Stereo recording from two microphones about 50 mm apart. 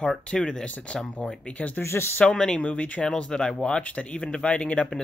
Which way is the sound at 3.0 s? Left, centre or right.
Centre.